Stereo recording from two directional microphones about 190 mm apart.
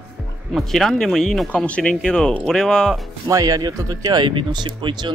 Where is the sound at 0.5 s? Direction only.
Centre (ahead or behind).